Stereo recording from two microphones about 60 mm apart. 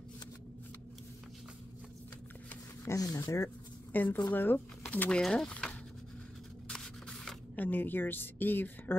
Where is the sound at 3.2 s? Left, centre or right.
Left.